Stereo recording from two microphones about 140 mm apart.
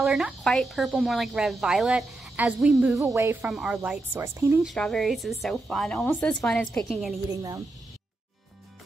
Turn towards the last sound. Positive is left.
turn(degrees=-25)  # may be behind; listen again after turning